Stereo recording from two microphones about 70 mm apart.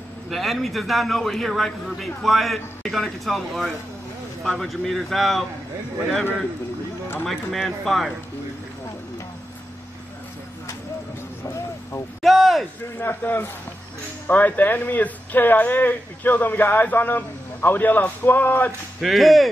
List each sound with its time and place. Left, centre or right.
0.3 s a man's voice: centre
7.2 s a man's voice: centre
12.2 s a sound: centre
13.0 s speech: left
18.9 s a man's voice: centre